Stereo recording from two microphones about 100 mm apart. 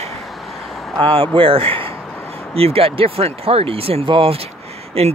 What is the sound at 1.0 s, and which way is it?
Speech, 60° right (ahead or behind).